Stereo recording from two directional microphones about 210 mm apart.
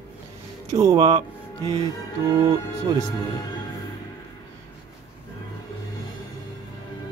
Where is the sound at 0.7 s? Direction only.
15° right (ahead or behind).